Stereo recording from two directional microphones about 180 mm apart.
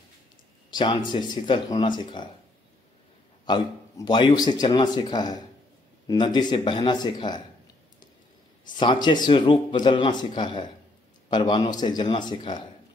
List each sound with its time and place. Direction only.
0.7 s speech: 25° left (ahead or behind)
3.4 s speech: 25° left (ahead or behind)
8.7 s speech: 25° left (ahead or behind)